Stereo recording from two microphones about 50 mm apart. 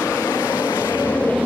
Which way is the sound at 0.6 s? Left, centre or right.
Left.